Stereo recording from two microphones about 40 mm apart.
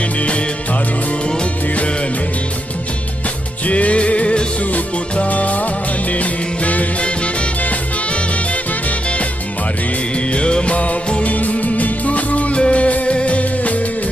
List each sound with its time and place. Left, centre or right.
0.0 s music: left
3.6 s music: left
4.6 s music: left